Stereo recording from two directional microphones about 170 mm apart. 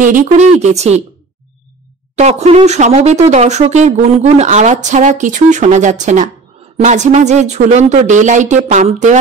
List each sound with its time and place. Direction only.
0.0 s a woman's voice: 50° right (ahead or behind)
2.1 s speech: 40° right (ahead or behind)